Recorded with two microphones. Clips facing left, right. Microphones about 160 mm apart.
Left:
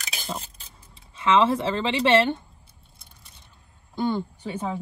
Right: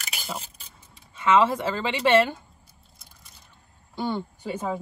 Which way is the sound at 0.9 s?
30° left (ahead or behind).